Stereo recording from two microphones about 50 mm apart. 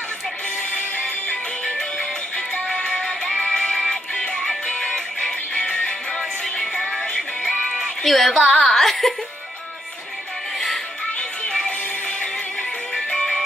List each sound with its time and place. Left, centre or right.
1.8 s music: left
3.3 s music: centre
5.6 s music: left
6.1 s music: centre
8.5 s a woman's voice: centre
12.9 s music: centre